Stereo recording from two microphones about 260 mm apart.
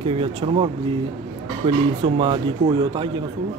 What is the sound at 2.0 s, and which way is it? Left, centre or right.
Speech, centre.